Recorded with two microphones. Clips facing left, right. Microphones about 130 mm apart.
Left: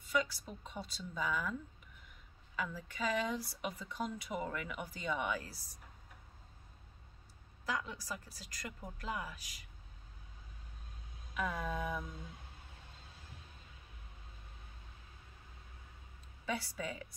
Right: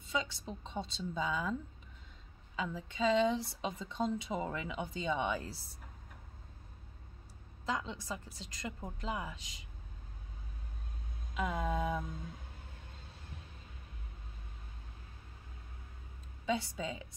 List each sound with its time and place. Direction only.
0.0 s speech: 25° right (ahead or behind)
7.6 s speech: 25° right (ahead or behind)
11.3 s speech: 20° right (ahead or behind)
16.4 s speech: 20° right (ahead or behind)